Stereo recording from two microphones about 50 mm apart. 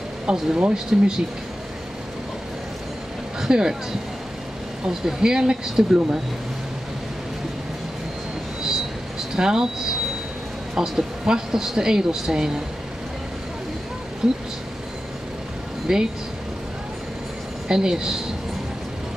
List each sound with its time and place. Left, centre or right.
0.6 s speech: centre
3.3 s speech: centre
4.8 s speech: centre
9.3 s speech: centre
10.7 s speech: centre
14.2 s speech: centre
15.9 s speech: centre
17.6 s speech: centre